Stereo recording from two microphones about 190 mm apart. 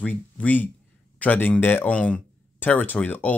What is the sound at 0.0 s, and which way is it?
Speech, 10° left (ahead or behind).